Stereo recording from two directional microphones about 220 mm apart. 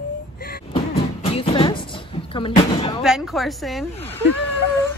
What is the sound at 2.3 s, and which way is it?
Speech, 20° left (ahead or behind).